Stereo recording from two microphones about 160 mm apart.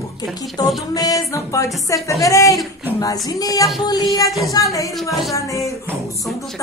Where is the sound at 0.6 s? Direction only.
25° left (ahead or behind).